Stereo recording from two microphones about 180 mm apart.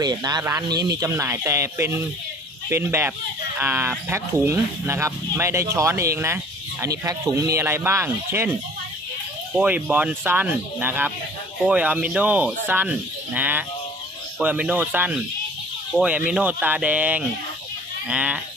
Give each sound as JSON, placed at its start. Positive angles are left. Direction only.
{"t": 0.0, "sound": "speech", "side_deg": -20}